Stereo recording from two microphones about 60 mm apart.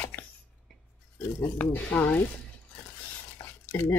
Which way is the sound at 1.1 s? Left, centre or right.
Left.